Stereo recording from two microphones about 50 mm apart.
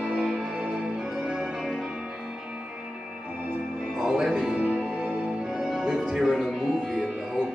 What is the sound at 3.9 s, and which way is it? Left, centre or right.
Music, centre.